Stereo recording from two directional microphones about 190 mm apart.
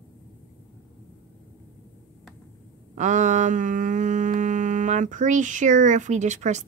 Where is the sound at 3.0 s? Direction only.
40° right (ahead or behind).